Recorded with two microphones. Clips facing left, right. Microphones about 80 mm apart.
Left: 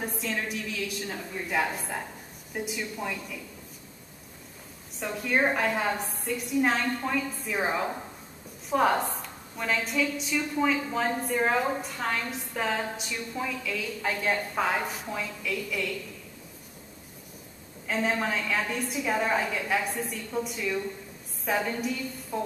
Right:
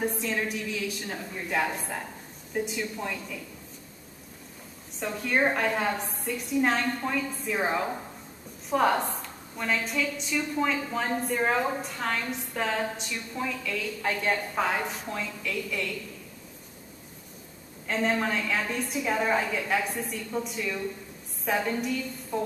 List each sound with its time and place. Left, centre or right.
0.0 s a woman's voice: centre
5.0 s a woman's voice: centre
17.8 s a woman's voice: centre